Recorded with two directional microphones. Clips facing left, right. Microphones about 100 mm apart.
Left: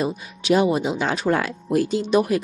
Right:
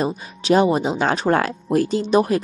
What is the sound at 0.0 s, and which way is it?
A woman's voice, 40° right (ahead or behind).